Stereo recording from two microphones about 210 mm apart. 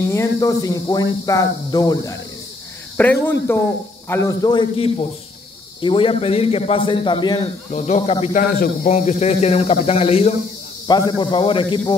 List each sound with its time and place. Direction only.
0.1 s a man's voice: 15° left (ahead or behind)